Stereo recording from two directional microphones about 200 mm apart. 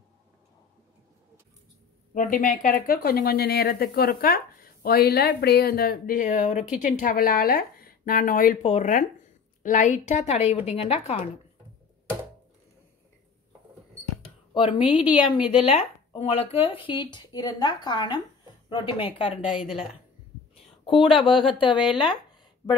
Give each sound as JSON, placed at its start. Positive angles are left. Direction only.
{"t": 2.1, "sound": "a woman's voice", "side_deg": 40}
{"t": 14.9, "sound": "a woman's voice", "side_deg": -5}
{"t": 15.2, "sound": "speech", "side_deg": 25}
{"t": 19.4, "sound": "a woman's voice", "side_deg": -5}
{"t": 20.8, "sound": "speech", "side_deg": 25}